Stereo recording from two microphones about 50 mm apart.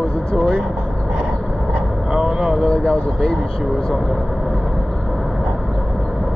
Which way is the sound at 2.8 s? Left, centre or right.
Centre.